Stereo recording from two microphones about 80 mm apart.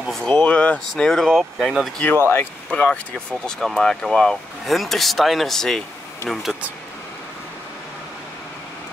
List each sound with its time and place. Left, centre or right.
0.1 s speech: centre
2.0 s speech: left
2.7 s speech: centre
3.4 s speech: centre